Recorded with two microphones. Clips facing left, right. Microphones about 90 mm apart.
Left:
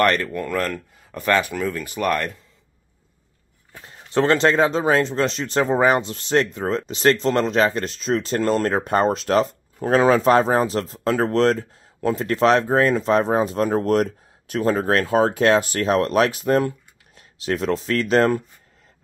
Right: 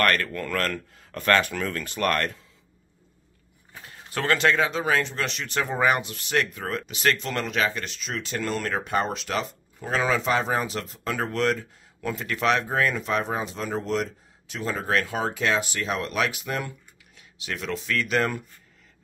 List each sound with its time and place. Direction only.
0.0 s speech: 20° left (ahead or behind)
3.8 s speech: 25° left (ahead or behind)